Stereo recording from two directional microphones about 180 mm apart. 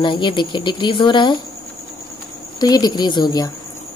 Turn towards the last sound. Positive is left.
turn(degrees=20)  # may be behind; listen again after turning